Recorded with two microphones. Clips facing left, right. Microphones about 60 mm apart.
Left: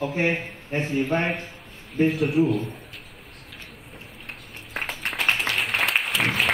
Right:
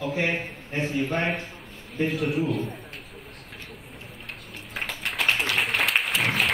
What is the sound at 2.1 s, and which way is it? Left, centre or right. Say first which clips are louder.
Speech: left 3 dB; centre.